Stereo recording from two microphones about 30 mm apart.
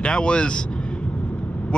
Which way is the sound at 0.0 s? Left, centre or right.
Left.